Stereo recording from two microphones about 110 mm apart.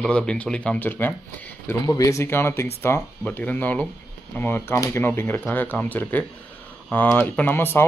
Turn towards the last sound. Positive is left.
turn(degrees=20)  # may be behind; listen again after turning